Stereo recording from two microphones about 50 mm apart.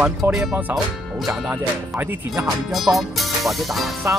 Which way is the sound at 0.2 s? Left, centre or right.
Right.